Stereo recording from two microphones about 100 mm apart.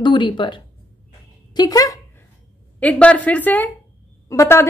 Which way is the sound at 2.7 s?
15° left (ahead or behind).